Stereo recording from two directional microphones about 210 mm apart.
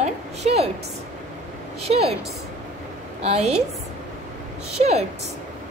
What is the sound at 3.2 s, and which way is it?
Speech, 30° right (ahead or behind).